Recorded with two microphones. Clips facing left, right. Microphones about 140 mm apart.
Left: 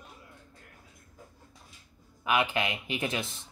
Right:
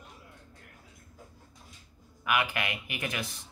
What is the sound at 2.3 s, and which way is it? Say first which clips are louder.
Speech: left 2 dB; 25° left (ahead or behind).